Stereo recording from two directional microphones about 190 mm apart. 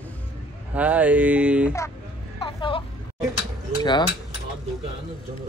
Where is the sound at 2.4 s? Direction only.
25° left (ahead or behind).